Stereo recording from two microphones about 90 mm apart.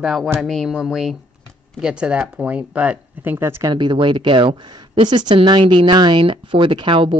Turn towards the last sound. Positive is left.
turn(degrees=-70)  # may be behind; listen again after turning